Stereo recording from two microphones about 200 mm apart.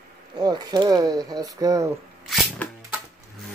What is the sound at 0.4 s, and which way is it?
Speech, 20° right (ahead or behind).